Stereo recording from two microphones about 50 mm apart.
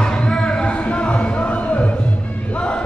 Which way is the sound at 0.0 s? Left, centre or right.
Centre.